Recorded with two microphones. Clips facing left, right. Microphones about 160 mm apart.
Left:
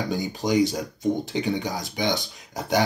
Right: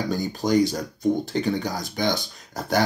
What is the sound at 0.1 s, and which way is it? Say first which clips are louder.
Speech: right 2 dB; 15° left (ahead or behind).